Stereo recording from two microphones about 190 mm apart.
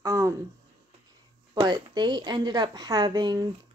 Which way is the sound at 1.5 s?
20° right (ahead or behind).